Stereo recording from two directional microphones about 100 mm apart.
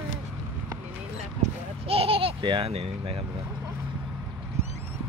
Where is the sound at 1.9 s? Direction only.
70° right (ahead or behind).